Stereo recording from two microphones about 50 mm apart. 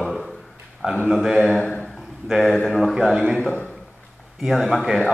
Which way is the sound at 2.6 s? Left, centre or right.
Centre.